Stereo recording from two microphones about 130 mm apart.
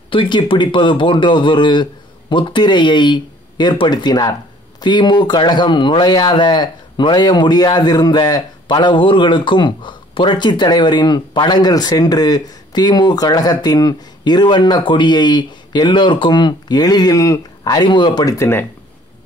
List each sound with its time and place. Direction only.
0.1 s speech: 40° left (ahead or behind); by 18.7 s 20° left (ahead or behind)